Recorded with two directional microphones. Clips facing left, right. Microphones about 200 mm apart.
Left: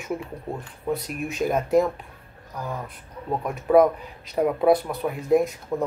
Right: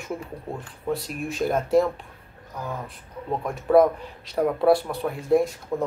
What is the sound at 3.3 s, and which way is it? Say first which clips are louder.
Speech: even; 5° left (ahead or behind).